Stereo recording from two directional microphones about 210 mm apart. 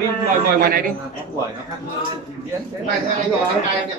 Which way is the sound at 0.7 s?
45° right (ahead or behind).